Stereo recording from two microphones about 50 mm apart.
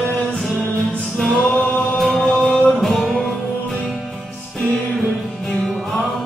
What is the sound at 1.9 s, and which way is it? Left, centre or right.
Music, centre.